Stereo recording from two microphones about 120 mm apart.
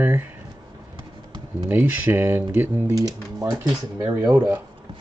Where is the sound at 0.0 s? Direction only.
15° right (ahead or behind).